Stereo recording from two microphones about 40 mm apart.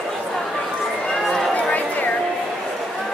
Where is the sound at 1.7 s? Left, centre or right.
Left.